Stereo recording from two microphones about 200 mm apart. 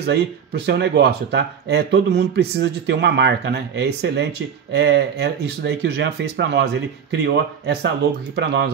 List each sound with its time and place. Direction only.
0.0 s speech: 55° right (ahead or behind)